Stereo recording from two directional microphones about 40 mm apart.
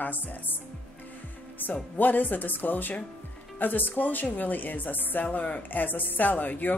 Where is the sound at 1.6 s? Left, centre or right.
Left.